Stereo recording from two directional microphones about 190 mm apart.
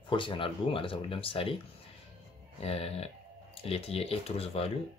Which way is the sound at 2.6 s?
30° left (ahead or behind).